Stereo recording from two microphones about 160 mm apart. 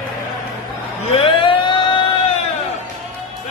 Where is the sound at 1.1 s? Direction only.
35° left (ahead or behind).